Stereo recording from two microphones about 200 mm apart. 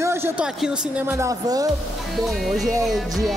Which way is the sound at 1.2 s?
15° right (ahead or behind).